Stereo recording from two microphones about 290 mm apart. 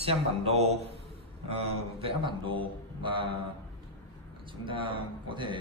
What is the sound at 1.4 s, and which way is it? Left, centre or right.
A man's voice, right.